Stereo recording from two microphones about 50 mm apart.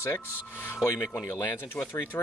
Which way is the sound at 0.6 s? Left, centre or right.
Left.